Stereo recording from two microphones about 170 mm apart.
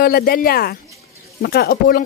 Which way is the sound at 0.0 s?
65° left (ahead or behind).